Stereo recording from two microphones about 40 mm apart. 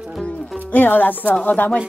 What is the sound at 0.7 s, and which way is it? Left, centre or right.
Music, left.